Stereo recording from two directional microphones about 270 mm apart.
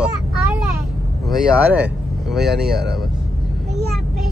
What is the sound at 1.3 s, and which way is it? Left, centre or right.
Speech, centre.